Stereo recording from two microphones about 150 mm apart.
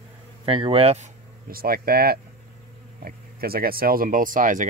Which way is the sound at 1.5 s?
80° right.